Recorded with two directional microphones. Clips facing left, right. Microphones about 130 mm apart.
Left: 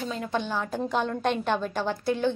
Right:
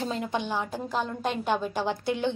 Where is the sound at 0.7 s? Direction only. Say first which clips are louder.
Left 3 dB; 5° right (ahead or behind).